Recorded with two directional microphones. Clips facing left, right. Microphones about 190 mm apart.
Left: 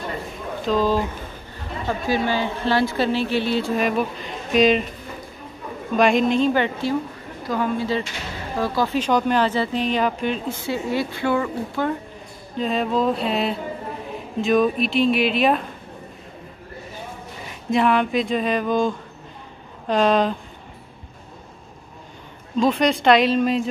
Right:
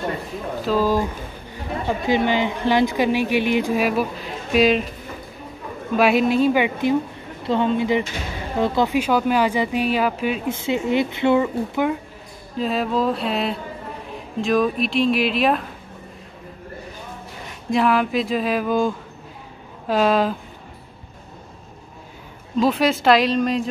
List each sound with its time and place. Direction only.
0.3 s a sound: 5° right (ahead or behind)
1.9 s a woman's voice: 20° right (ahead or behind); by 4.8 s 5° right (ahead or behind)
5.9 s a woman's voice: 5° right (ahead or behind)
7.4 s speech: 25° right (ahead or behind)
8.9 s a woman's voice: 10° right (ahead or behind)
12.5 s speech: 5° right (ahead or behind)
17.5 s speech: centre (ahead or behind)
22.6 s speech: 5° right (ahead or behind)